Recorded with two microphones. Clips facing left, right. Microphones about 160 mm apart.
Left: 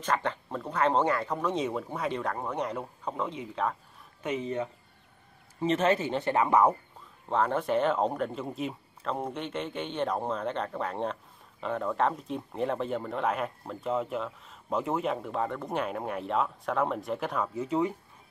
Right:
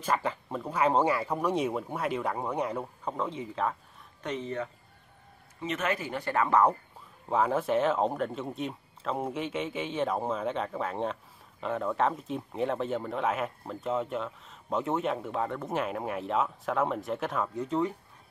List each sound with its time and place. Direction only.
0.0 s speech: 5° right (ahead or behind); by 4.6 s 15° left (ahead or behind)
5.6 s speech: 30° left (ahead or behind); by 6.8 s 10° left (ahead or behind)
7.2 s speech: 5° right (ahead or behind)